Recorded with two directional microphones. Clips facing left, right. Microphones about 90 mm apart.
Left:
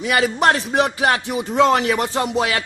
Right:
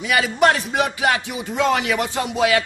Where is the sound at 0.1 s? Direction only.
35° left (ahead or behind).